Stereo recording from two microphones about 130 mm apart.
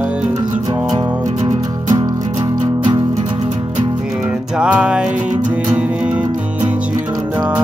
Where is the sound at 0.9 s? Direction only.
35° right (ahead or behind); by 3.8 s 50° right (ahead or behind).